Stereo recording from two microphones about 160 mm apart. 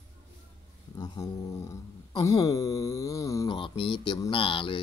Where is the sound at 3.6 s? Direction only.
30° left (ahead or behind).